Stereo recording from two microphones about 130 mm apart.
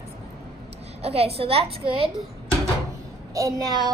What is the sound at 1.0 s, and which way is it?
A woman's voice, 50° right (ahead or behind).